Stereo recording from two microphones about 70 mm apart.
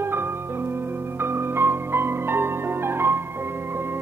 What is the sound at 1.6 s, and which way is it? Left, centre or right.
Music, right.